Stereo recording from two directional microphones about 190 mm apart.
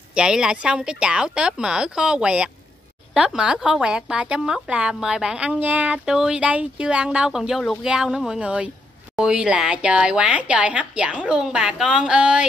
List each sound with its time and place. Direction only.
0.1 s a woman's voice: 5° right (ahead or behind)